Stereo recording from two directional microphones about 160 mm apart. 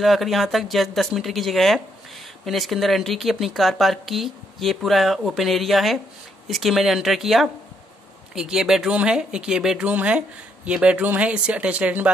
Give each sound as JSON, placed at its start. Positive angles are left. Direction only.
{"t": 0.0, "sound": "speech", "side_deg": 0}